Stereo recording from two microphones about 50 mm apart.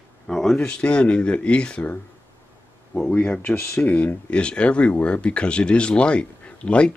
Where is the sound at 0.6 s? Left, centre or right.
Left.